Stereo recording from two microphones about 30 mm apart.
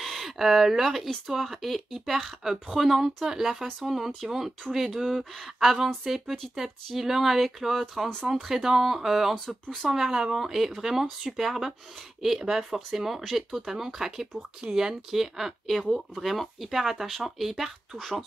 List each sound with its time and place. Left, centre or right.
0.0 s speech: centre
2.7 s speech: centre
3.3 s speech: centre
3.8 s speech: centre
9.5 s speech: centre
9.8 s speech: centre